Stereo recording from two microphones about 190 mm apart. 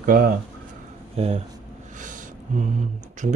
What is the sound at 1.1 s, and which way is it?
Speech, 30° right (ahead or behind).